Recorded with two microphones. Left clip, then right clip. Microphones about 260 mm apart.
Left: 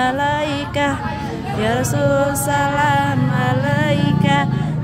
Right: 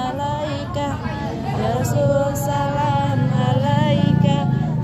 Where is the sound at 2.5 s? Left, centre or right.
Left.